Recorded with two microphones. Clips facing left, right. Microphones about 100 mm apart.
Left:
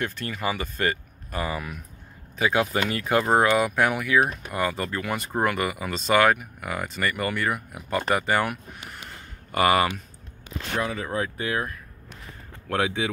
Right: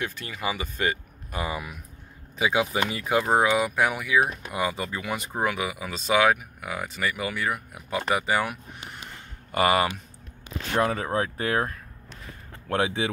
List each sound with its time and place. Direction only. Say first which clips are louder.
0.0 s speech: left 2 dB; 10° right (ahead or behind)
9.5 s speech: left 1 dB; 25° right (ahead or behind)
10.8 s speech: right 3 dB; 40° right (ahead or behind)